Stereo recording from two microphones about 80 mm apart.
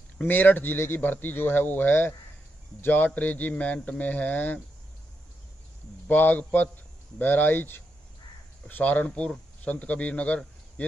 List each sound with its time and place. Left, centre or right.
0.2 s speech: left
6.0 s a man's voice: left